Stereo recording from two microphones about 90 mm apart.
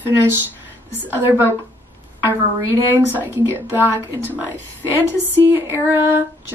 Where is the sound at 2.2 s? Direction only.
25° right (ahead or behind).